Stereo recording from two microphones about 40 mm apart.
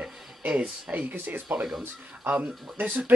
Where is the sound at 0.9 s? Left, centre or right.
Right.